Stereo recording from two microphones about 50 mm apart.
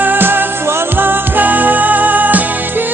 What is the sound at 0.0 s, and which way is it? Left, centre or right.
Music, right.